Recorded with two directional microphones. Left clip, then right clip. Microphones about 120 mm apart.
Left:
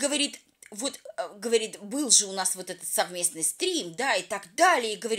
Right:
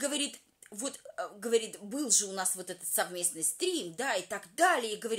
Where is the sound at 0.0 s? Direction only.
20° left (ahead or behind).